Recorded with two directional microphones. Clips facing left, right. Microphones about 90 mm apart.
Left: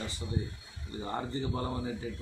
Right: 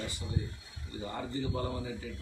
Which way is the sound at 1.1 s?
35° left (ahead or behind).